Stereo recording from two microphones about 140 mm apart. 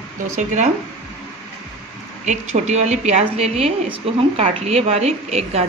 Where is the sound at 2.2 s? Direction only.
55° right (ahead or behind).